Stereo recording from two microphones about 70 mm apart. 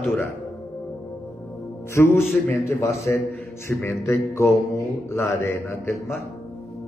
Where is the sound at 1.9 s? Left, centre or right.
Left.